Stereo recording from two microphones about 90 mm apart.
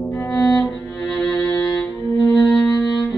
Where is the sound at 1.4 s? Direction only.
30° left (ahead or behind).